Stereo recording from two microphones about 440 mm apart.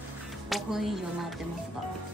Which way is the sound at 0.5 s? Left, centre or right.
Centre.